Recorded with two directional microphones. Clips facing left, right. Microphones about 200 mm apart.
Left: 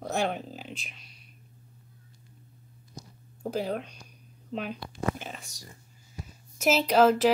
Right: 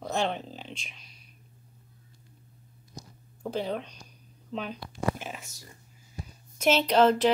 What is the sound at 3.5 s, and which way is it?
Speech, 5° left (ahead or behind).